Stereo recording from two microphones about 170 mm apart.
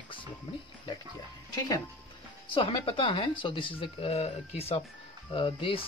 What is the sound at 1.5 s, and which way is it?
Speech, 20° left (ahead or behind).